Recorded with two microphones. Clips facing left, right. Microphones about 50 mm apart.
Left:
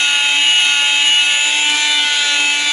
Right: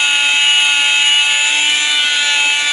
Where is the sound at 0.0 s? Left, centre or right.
Centre.